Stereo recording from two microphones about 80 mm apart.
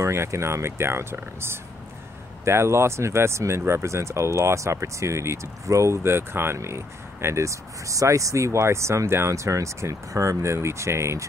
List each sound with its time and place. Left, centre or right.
0.0 s speech: right